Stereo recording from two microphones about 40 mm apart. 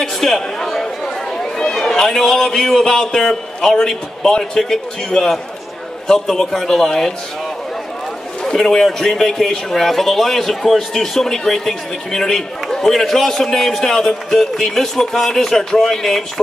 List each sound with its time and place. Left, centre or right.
0.0 s chatter: centre
2.4 s a man's voice: centre
8.5 s a man's voice: centre